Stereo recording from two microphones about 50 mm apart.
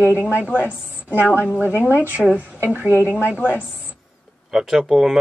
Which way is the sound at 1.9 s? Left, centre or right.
Right.